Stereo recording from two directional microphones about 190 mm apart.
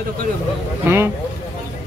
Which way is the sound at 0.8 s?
10° right (ahead or behind).